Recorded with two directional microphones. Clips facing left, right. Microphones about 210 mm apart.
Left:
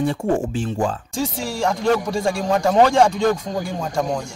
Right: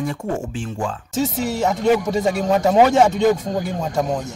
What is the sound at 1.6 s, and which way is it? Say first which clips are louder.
A man's voice: right 1 dB; 5° right (ahead or behind).